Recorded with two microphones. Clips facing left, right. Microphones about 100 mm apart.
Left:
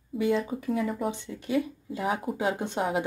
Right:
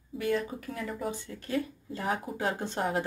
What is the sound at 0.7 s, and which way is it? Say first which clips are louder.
Speech: left 7 dB; 5° left (ahead or behind).